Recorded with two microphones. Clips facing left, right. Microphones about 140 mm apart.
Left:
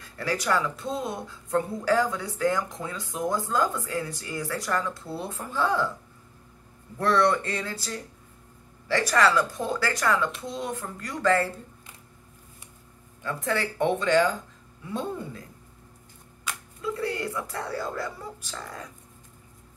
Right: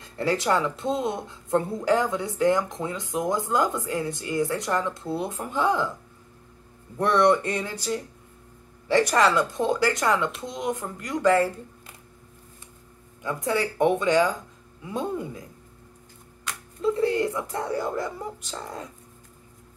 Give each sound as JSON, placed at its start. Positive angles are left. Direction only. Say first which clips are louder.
{"t": 0.0, "sound": "speech", "louder": "right 4 dB", "side_deg": -25}
{"t": 7.0, "sound": "speech", "louder": "right 3 dB", "side_deg": -20}
{"t": 13.2, "sound": "speech", "louder": "right 3 dB", "side_deg": -15}
{"t": 16.8, "sound": "speech", "louder": "right 7 dB", "side_deg": -25}